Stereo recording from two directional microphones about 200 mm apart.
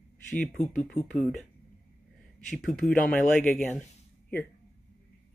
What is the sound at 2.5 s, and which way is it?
Speech, centre (ahead or behind).